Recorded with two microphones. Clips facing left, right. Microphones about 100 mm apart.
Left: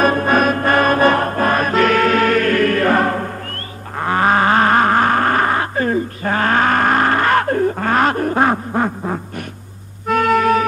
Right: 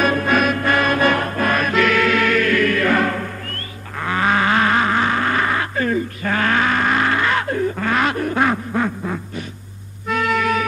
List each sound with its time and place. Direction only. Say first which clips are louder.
0.0 s music: left 3 dB; 35° left (ahead or behind)